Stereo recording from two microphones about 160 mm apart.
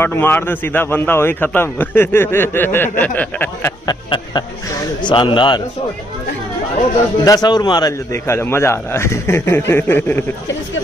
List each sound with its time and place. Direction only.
0.0 s a man's voice: 15° left (ahead or behind)
3.8 s speech: 25° left (ahead or behind)
7.2 s a man's voice: 25° left (ahead or behind)